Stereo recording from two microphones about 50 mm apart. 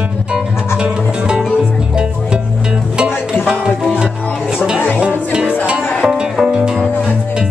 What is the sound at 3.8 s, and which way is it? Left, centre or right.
Music, centre.